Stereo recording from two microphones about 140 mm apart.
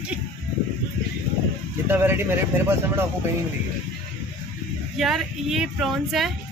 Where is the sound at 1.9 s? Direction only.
15° right (ahead or behind).